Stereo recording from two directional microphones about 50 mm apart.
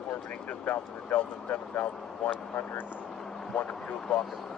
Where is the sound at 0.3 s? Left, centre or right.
Left.